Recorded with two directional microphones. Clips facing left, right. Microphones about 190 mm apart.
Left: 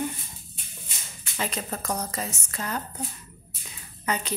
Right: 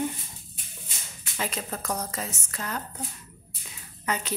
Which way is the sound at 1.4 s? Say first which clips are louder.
Left 1 dB; 5° right (ahead or behind).